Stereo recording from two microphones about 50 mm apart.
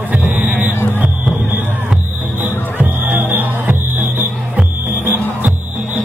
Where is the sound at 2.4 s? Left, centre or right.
Right.